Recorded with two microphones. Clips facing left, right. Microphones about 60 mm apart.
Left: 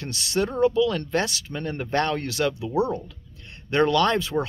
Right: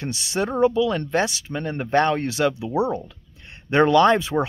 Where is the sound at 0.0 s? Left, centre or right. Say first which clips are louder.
Even; centre.